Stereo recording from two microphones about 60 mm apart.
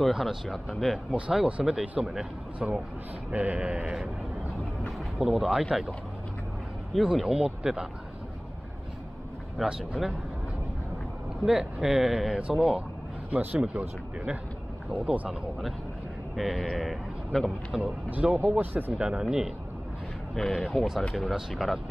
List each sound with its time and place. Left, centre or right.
0.0 s speech: centre
3.3 s speech: centre
3.7 s speech: centre
4.6 s vehicle: centre
6.9 s speech: centre
9.6 s speech: centre
11.4 s speech: centre
13.3 s speech: right
13.6 s speech: centre
16.3 s speech: centre
18.5 s speech: right
18.9 s speech: centre